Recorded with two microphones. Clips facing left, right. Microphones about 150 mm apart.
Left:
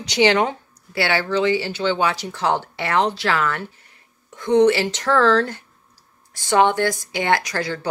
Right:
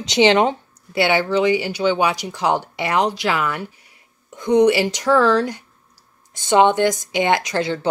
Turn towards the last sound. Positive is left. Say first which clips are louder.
# right 2 dB
turn(degrees=-20)  # may be behind; listen again after turning